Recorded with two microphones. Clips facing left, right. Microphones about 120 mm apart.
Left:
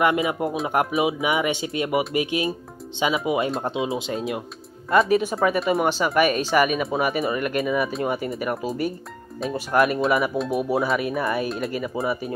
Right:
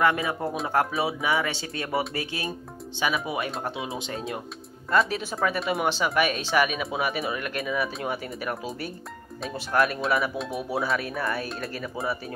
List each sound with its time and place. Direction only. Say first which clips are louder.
0.0 s speech: left 3 dB; 15° left (ahead or behind)
4.9 s speech: left 6 dB; 5° left (ahead or behind)